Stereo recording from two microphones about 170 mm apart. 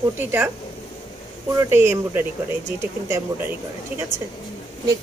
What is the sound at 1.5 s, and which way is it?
A woman's voice, 15° right (ahead or behind).